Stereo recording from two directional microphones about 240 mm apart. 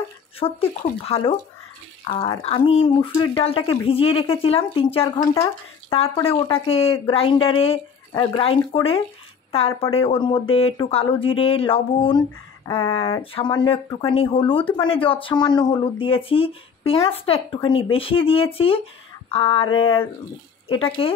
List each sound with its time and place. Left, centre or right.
0.4 s speech: left